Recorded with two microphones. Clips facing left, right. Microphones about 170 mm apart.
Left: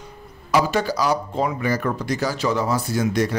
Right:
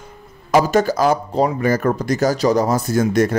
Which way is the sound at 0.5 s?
45° right (ahead or behind).